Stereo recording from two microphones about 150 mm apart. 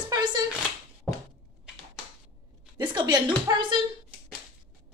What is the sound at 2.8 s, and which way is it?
Speech, 30° right (ahead or behind).